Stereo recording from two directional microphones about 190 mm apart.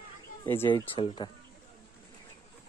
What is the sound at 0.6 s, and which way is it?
Speech, 25° left (ahead or behind).